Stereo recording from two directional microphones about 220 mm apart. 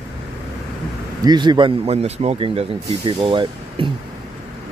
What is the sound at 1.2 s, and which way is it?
Speech, 20° right (ahead or behind).